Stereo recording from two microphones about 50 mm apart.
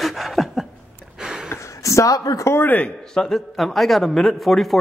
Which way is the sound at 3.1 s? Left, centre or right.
Centre.